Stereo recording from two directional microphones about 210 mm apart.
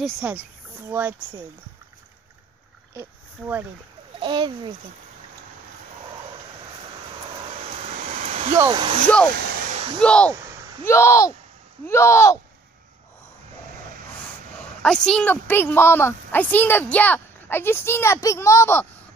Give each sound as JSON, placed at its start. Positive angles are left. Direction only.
{"t": 0.0, "sound": "speech", "side_deg": -10}
{"t": 2.9, "sound": "a sound", "side_deg": -10}
{"t": 4.2, "sound": "a child's voice", "side_deg": -20}
{"t": 7.7, "sound": "vehicle", "side_deg": -35}
{"t": 8.5, "sound": "a child's voice", "side_deg": -20}
{"t": 9.0, "sound": "speech", "side_deg": 5}
{"t": 9.3, "sound": "a sound", "side_deg": -45}
{"t": 9.7, "sound": "a sound", "side_deg": -30}
{"t": 9.9, "sound": "speech", "side_deg": 5}
{"t": 14.6, "sound": "speech", "side_deg": 5}